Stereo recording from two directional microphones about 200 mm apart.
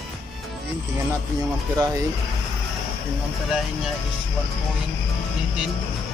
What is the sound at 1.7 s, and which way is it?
Speech, 15° right (ahead or behind).